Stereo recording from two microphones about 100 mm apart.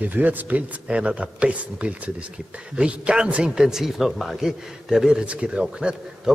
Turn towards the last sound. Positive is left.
turn(degrees=-10)  # may be behind; listen again after turning